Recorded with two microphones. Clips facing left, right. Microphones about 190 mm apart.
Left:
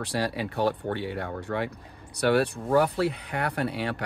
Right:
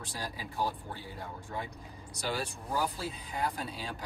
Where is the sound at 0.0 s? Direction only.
70° left (ahead or behind).